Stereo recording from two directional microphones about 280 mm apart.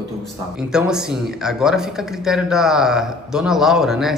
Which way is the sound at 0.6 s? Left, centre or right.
Centre.